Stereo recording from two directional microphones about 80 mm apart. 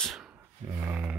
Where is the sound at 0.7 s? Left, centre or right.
Right.